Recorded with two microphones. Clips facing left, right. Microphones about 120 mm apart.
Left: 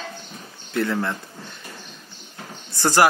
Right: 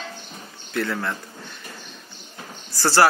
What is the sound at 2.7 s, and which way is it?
Speech, 20° left (ahead or behind).